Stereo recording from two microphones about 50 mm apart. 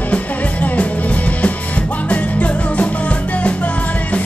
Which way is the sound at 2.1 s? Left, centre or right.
Left.